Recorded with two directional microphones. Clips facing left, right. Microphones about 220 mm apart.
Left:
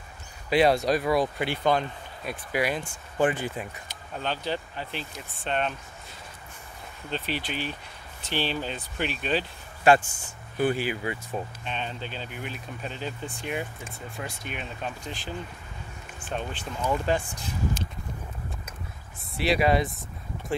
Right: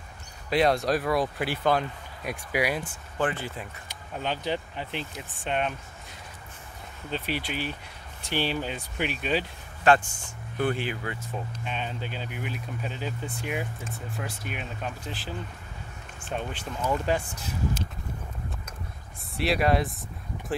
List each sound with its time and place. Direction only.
0.5 s speech: centre (ahead or behind)
3.2 s speech: 15° left (ahead or behind)
3.9 s speech: 10° right (ahead or behind)
7.1 s speech: 10° right (ahead or behind)
9.8 s speech: 5° left (ahead or behind)
11.6 s speech: 10° right (ahead or behind)
19.3 s speech: centre (ahead or behind)